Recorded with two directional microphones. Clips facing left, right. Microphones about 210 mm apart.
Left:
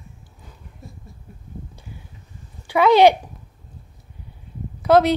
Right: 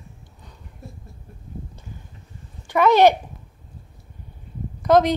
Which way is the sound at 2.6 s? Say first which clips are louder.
Left 2 dB; 10° left (ahead or behind).